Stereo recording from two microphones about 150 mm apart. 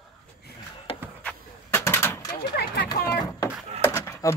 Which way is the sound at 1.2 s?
10° left (ahead or behind).